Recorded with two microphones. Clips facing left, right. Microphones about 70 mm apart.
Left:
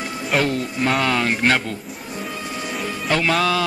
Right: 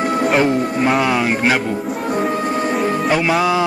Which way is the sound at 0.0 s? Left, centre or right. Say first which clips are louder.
Right 11 dB; right.